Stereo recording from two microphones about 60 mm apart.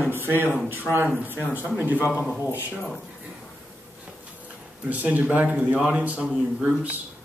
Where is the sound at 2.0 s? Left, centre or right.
Left.